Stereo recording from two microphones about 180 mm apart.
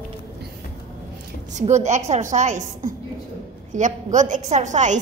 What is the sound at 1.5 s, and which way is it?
A woman's voice, 40° right (ahead or behind).